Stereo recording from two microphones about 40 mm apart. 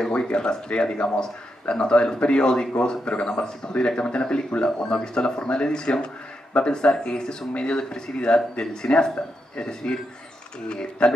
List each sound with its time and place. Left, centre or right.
0.3 s speech: left